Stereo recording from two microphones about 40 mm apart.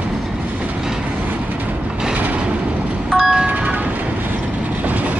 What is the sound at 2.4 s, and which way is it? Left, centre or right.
Vehicle, right.